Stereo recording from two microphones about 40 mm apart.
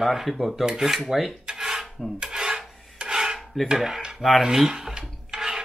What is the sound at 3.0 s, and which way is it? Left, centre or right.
Filing, centre.